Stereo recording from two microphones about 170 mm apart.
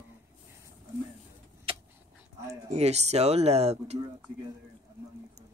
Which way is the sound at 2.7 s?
40° right (ahead or behind).